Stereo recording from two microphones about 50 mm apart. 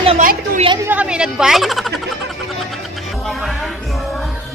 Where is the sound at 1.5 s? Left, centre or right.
Centre.